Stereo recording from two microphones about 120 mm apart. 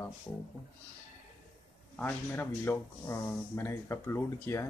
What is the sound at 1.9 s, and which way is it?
Speech, 15° left (ahead or behind).